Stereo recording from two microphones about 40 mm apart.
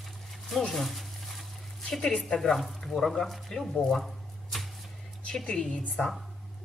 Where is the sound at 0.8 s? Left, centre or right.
Centre.